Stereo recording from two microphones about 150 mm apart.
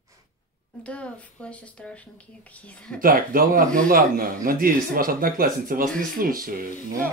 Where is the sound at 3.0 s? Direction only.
75° right (ahead or behind).